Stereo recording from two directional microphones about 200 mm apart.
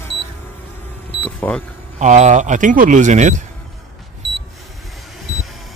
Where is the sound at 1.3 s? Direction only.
10° left (ahead or behind).